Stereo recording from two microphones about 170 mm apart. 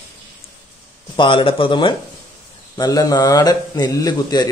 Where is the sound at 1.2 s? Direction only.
30° left (ahead or behind).